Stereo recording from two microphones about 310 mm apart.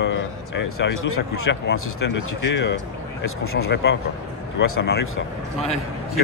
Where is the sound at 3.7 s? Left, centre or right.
Left.